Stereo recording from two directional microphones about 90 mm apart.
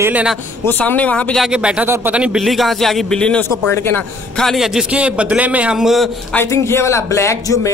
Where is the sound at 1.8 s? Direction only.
25° right (ahead or behind).